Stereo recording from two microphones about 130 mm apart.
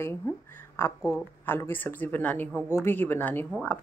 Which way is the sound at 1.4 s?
15° left (ahead or behind).